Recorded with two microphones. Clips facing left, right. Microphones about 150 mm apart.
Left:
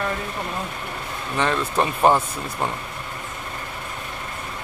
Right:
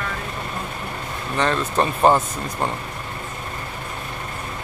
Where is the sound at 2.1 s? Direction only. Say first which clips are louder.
Right 1 dB; 15° left (ahead or behind).